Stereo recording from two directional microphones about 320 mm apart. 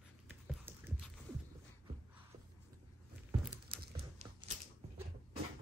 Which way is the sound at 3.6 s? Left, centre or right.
Right.